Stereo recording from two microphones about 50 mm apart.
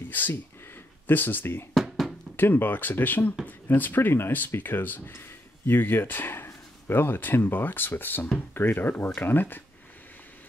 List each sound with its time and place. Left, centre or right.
0.1 s speech: left
1.7 s music: centre
2.3 s speech: left